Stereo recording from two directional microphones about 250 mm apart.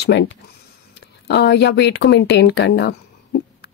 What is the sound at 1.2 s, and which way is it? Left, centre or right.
Speech, left.